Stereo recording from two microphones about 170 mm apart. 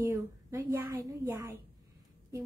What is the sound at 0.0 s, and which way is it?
A child's voice, 15° right (ahead or behind).